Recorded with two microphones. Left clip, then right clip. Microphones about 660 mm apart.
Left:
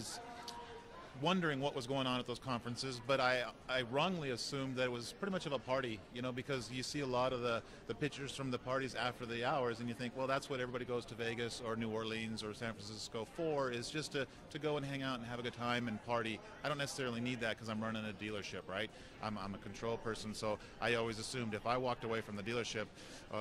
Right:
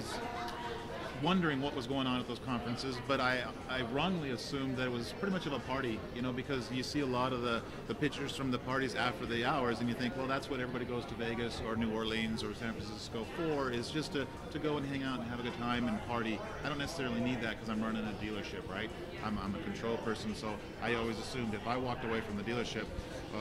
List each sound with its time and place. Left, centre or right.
1.2 s a man's voice: left